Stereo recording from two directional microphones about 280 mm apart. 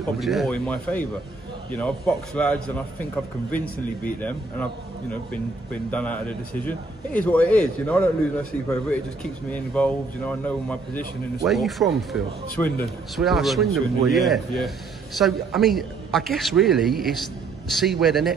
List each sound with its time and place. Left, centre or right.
0.2 s a man's voice: centre